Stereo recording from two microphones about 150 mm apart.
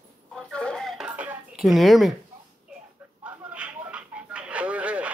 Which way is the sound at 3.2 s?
10° right (ahead or behind).